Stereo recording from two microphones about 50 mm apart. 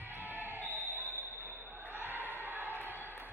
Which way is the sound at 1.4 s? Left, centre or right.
Right.